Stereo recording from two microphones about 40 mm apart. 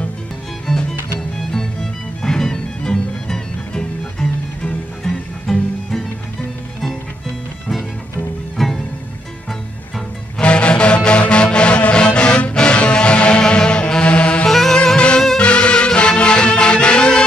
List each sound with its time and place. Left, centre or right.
0.7 s music: centre
5.5 s music: centre
8.5 s music: centre
10.4 s music: left
14.5 s music: centre
15.0 s music: left